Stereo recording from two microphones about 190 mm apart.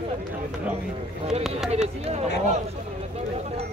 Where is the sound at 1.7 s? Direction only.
35° right (ahead or behind).